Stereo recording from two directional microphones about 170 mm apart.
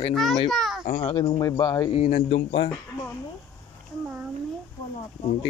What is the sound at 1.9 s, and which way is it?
Speech, 40° left (ahead or behind).